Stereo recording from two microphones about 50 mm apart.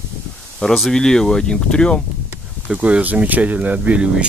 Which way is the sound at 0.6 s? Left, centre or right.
Centre.